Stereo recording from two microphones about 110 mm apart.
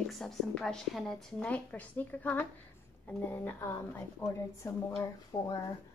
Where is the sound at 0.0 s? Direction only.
5° left (ahead or behind).